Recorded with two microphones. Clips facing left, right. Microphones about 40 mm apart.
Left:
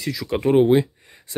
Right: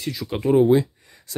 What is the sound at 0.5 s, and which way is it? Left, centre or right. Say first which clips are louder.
Speech: even; left.